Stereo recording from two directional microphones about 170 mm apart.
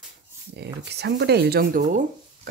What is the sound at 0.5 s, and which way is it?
Speech, 80° right.